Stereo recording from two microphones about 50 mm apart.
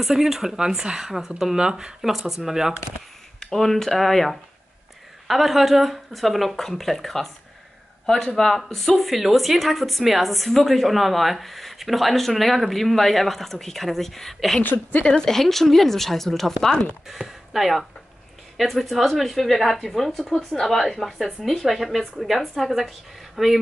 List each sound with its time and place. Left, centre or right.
0.0 s speech: centre
2.0 s speech: centre
3.3 s speech: centre
8.4 s speech: centre
14.6 s a woman's voice: left
15.0 s speech: centre
17.1 s speech: centre